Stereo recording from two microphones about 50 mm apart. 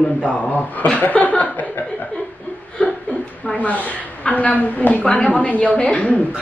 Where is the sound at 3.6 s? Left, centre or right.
Left.